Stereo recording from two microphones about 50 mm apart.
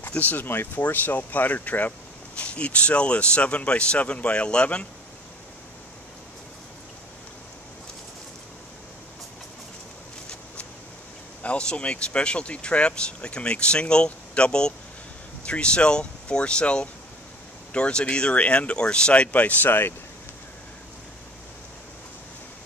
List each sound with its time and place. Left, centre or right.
0.1 s speech: left
0.5 s speech: left
11.4 s speech: left